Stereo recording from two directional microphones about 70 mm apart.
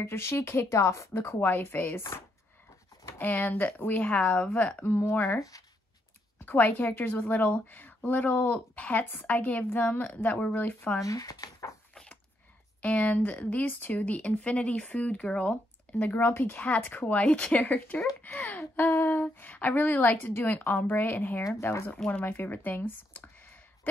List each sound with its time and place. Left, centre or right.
0.0 s a woman's voice: left
3.2 s speech: left
4.9 s a woman's voice: left
6.4 s speech: left
11.1 s speech: left
11.9 s a sound: centre
12.8 s speech: centre
18.8 s speech: left
19.2 s a woman's voice: left
21.9 s speech: centre
22.2 s speech: left